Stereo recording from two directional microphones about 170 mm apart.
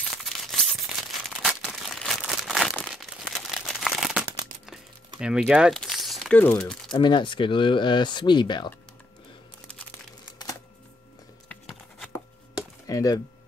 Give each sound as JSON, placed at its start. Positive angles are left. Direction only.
{"t": 0.1, "sound": "a sound", "side_deg": 0}
{"t": 1.4, "sound": "crumpling", "side_deg": 0}
{"t": 5.2, "sound": "speech", "side_deg": -5}
{"t": 6.9, "sound": "speech", "side_deg": 25}
{"t": 11.4, "sound": "patter", "side_deg": 5}
{"t": 12.8, "sound": "speech", "side_deg": 20}